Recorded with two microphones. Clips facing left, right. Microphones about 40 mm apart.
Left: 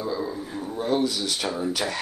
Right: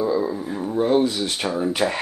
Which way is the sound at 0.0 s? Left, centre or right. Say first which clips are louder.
Right 7 dB; centre.